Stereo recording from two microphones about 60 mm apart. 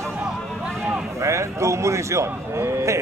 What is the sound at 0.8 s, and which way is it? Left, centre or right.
A man's voice, right.